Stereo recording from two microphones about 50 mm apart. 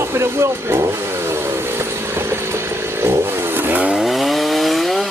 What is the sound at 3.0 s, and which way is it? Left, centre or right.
Chainsaw, right.